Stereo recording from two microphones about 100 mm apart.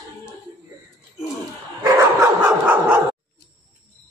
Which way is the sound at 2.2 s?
15° right (ahead or behind).